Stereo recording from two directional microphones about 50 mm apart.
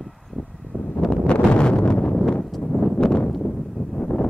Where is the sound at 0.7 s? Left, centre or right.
Right.